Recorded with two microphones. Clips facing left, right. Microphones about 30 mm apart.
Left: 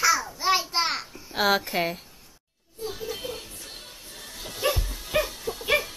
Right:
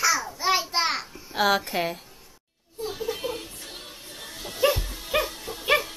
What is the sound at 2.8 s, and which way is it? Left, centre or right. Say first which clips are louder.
Chuckle: right 2 dB; centre.